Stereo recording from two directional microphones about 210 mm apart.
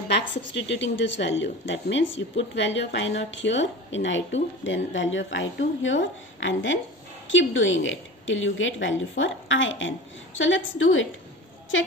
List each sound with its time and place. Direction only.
0.1 s speech: 60° left (ahead or behind)